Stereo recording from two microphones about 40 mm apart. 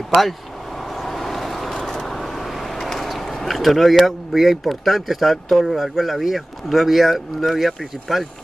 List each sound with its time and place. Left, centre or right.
0.8 s vehicle: centre